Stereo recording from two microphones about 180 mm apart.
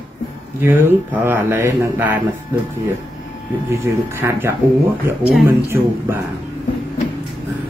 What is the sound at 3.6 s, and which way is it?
Speech, 15° right (ahead or behind).